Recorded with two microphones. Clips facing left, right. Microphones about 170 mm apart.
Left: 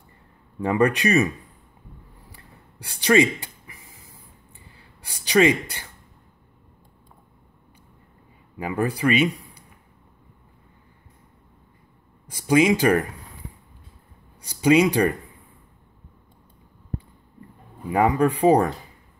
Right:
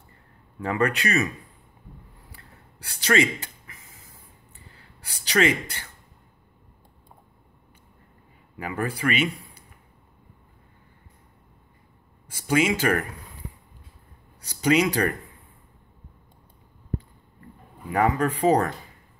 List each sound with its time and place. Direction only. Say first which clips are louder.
0.6 s speech: left 4 dB; 15° left (ahead or behind)
2.3 s a sound: left 3 dB; 15° left (ahead or behind)
5.0 s speech: left 4 dB; 15° left (ahead or behind)
8.5 s speech: left 4 dB; 15° left (ahead or behind)
12.3 s speech: left 5 dB; 15° left (ahead or behind)
14.4 s speech: left 4 dB; 15° left (ahead or behind)
17.8 s speech: left 3 dB; 15° left (ahead or behind)